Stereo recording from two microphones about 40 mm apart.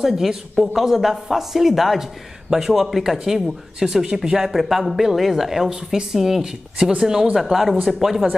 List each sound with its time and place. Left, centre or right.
0.0 s a woman's voice: centre
7.3 s a woman's voice: centre